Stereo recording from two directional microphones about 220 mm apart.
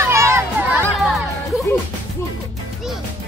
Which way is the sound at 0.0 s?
15° right (ahead or behind).